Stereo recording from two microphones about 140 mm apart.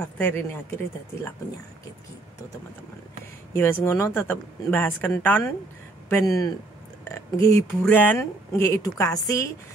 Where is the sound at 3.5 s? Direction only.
15° left (ahead or behind).